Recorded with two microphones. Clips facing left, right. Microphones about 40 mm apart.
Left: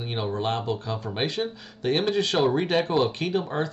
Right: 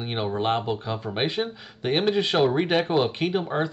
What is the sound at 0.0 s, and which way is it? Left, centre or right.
Speech, right.